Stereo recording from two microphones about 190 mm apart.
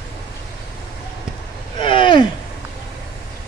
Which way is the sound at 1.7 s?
25° left (ahead or behind).